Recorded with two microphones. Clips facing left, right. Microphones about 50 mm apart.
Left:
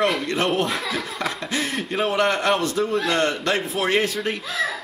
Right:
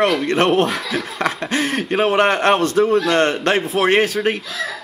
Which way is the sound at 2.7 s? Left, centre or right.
Right.